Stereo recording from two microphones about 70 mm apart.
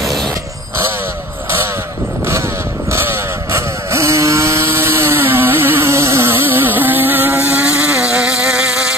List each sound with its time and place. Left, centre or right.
2.9 s vehicle: right; by 8.9 s centre